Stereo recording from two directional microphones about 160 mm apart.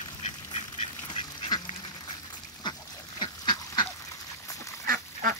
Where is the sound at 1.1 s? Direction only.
30° left (ahead or behind).